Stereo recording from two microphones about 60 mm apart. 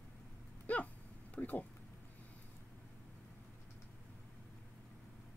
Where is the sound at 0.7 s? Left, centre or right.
Left.